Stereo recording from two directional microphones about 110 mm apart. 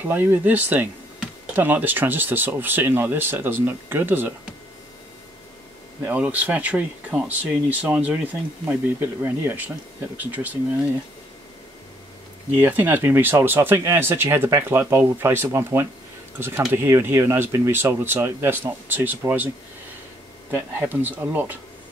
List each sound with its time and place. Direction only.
0.0 s speech: 20° right (ahead or behind)
6.0 s speech: 15° right (ahead or behind)
12.5 s speech: 15° right (ahead or behind)
20.5 s speech: 15° right (ahead or behind)